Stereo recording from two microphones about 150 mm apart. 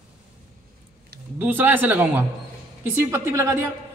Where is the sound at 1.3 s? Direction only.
10° right (ahead or behind).